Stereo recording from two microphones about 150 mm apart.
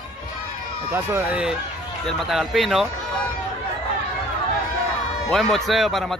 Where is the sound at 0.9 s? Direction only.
10° right (ahead or behind).